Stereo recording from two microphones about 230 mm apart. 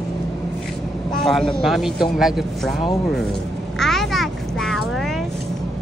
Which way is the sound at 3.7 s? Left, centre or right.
Centre.